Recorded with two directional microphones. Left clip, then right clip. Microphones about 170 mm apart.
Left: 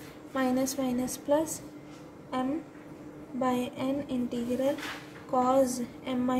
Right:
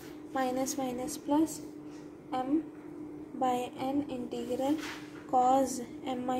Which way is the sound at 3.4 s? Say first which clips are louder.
Left 1 dB; 15° right (ahead or behind).